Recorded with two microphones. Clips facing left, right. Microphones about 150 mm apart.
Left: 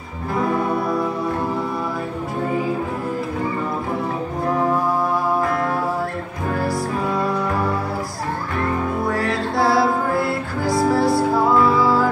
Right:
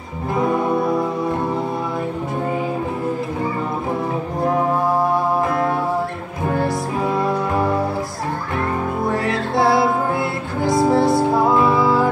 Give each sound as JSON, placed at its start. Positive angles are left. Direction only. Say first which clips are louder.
{"t": 9.2, "sound": "music", "louder": "right 2 dB", "side_deg": -25}